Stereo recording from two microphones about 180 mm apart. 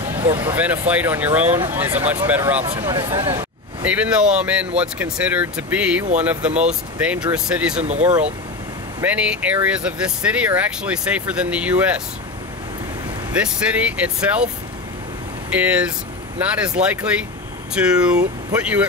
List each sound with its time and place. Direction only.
0.3 s speech: 10° right (ahead or behind)
3.8 s speech: 5° right (ahead or behind)
7.8 s speech: 40° right (ahead or behind)
9.0 s speech: 5° right (ahead or behind)
13.4 s speech: 5° right (ahead or behind)
15.5 s speech: 5° right (ahead or behind)